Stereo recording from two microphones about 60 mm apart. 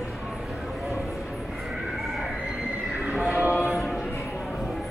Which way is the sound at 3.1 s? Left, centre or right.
Centre.